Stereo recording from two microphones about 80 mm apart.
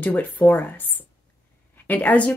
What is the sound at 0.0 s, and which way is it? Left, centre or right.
Speech, left.